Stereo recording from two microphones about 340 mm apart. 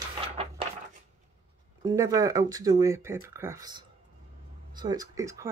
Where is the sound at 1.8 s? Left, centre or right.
Centre.